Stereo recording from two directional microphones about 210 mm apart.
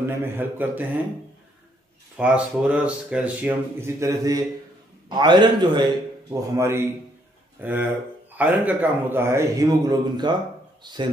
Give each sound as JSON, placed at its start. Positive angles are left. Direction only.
{"t": 0.0, "sound": "a man's voice", "side_deg": -10}
{"t": 2.1, "sound": "a man's voice", "side_deg": -5}